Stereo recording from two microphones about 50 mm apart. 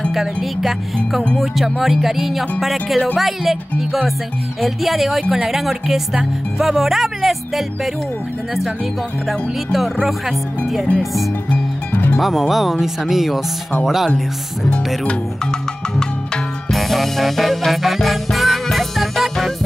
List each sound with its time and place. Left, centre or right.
0.1 s speech: centre
9.3 s speech: centre
11.9 s music: left
12.2 s speech: centre
16.7 s music: centre